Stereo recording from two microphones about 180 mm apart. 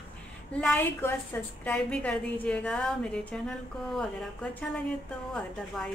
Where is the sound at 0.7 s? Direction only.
10° left (ahead or behind).